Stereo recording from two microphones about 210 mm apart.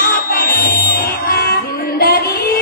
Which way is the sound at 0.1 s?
45° left (ahead or behind).